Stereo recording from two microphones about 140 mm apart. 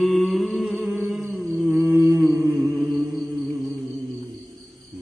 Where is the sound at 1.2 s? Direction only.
10° right (ahead or behind).